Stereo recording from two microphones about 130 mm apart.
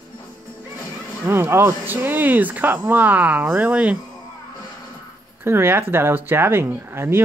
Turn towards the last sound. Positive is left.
turn(degrees=-20)  # may be behind; listen again after turning